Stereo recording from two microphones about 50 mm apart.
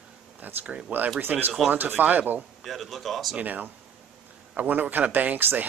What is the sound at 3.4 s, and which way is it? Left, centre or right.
Speech, right.